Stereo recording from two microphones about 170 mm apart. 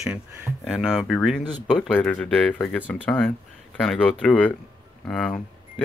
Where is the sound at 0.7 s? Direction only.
Centre (ahead or behind).